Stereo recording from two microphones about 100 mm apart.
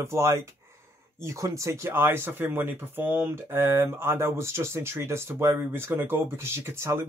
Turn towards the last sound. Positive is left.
turn(degrees=-25)  # may be behind; listen again after turning